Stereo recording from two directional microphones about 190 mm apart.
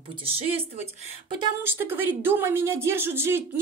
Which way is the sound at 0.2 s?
30° right (ahead or behind).